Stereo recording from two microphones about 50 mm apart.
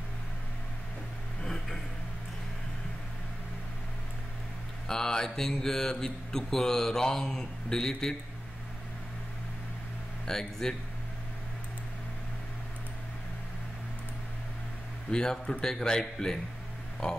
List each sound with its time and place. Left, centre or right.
1.4 s a sound: centre
4.8 s mantra: centre
10.2 s mantra: centre
15.0 s mantra: centre